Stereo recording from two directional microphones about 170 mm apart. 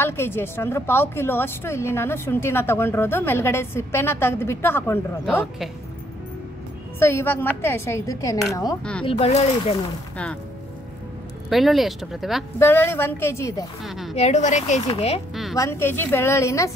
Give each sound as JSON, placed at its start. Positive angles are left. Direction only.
{"t": 0.0, "sound": "a woman's voice", "side_deg": 15}
{"t": 7.0, "sound": "a woman's voice", "side_deg": 15}
{"t": 9.0, "sound": "a woman's voice", "side_deg": 40}
{"t": 11.4, "sound": "speech", "side_deg": 0}
{"t": 12.5, "sound": "a woman's voice", "side_deg": 15}
{"t": 13.8, "sound": "a woman's voice", "side_deg": 0}
{"t": 14.1, "sound": "a woman's voice", "side_deg": 40}
{"t": 15.5, "sound": "a woman's voice", "side_deg": 15}